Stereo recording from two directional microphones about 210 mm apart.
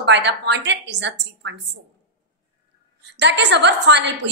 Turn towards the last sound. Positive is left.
turn(degrees=-55)  # may be behind; listen again after turning